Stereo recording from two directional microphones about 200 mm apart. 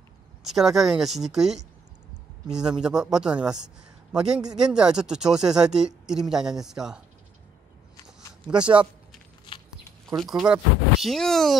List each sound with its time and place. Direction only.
0.4 s speech: centre (ahead or behind)
10.0 s speech: centre (ahead or behind)